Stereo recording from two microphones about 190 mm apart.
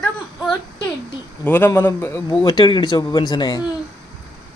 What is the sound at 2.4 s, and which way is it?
Speech, 25° left (ahead or behind).